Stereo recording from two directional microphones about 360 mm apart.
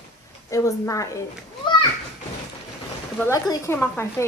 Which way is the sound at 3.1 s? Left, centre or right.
Centre.